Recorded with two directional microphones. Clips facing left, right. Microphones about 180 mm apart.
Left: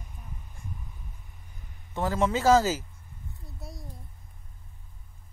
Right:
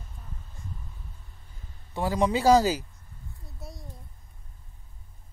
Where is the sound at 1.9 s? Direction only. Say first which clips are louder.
Right 1 dB; 15° right (ahead or behind).